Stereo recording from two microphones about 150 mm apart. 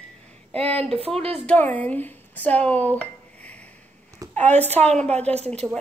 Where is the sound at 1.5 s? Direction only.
10° left (ahead or behind).